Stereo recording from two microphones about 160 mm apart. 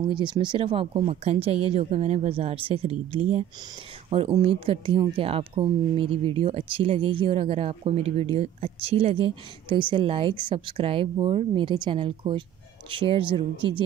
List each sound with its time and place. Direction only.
0.0 s speech: 30° right (ahead or behind)